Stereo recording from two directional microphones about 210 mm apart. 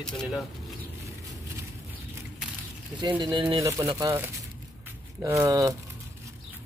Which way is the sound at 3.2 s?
20° right (ahead or behind).